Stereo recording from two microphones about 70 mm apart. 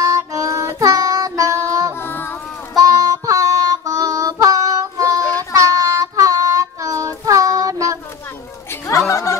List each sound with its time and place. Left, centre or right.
0.0 s child singing: right
2.0 s child singing: left
2.8 s music: right
5.6 s child singing: right
8.8 s a sound: left